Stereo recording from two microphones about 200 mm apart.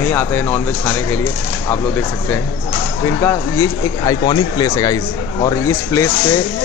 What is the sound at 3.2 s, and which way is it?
A man's voice, 15° left (ahead or behind).